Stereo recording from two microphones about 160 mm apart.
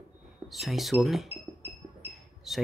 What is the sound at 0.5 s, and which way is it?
Speech, centre (ahead or behind).